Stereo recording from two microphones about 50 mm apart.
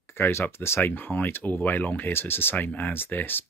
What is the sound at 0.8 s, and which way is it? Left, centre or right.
Speech, left.